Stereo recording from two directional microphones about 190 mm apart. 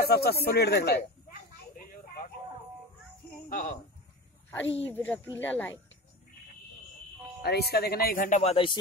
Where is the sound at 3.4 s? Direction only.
40° left (ahead or behind).